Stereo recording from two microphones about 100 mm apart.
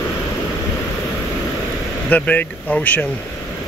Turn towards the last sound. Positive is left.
turn(degrees=15)  # may be behind; listen again after turning